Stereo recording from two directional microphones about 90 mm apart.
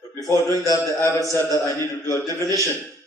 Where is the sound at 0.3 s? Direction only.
40° left (ahead or behind).